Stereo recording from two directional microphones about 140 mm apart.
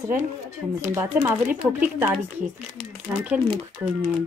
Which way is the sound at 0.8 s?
15° right (ahead or behind).